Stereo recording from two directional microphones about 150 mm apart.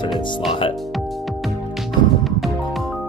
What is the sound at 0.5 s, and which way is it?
Speech, 35° left (ahead or behind).